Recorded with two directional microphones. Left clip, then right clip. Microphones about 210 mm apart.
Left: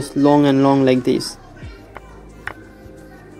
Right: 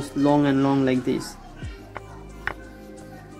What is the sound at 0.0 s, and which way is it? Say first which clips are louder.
Speech: left 6 dB; 20° left (ahead or behind).